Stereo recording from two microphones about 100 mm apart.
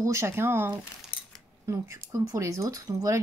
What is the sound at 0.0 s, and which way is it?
Speech, 30° right (ahead or behind).